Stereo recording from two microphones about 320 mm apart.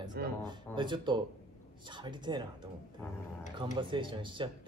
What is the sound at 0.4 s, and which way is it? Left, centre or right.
A man's voice, centre.